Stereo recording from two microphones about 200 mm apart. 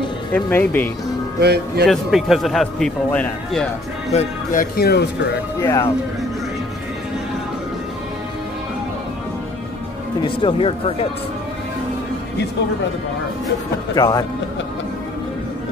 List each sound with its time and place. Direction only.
0.3 s speech: 10° left (ahead or behind)
1.4 s speech: 55° right (ahead or behind)
1.9 s a man's voice: centre (ahead or behind)
4.1 s speech: 35° left (ahead or behind); by 5.4 s 50° left (ahead or behind)
5.6 s speech: 10° left (ahead or behind)
10.2 s speech: 25° left (ahead or behind)
13.9 s speech: 20° left (ahead or behind)